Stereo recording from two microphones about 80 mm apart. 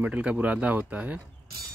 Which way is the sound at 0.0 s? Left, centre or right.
Centre.